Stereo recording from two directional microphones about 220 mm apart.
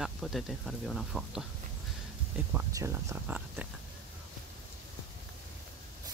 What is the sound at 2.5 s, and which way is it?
Speech, 10° right (ahead or behind).